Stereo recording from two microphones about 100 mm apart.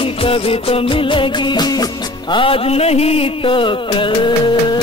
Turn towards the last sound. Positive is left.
turn(degrees=55)  # may be behind; listen again after turning